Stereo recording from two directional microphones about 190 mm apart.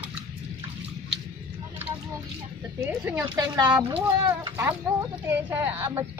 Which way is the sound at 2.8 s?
10° right (ahead or behind).